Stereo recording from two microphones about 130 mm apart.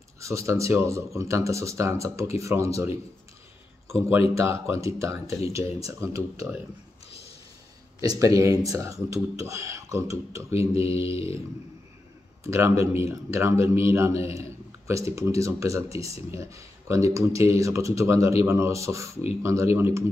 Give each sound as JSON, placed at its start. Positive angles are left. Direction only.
{"t": 0.2, "sound": "a man's voice", "side_deg": -25}
{"t": 3.9, "sound": "a man's voice", "side_deg": -25}
{"t": 8.0, "sound": "a man's voice", "side_deg": -30}
{"t": 10.9, "sound": "mantra", "side_deg": 45}
{"t": 12.4, "sound": "a man's voice", "side_deg": -20}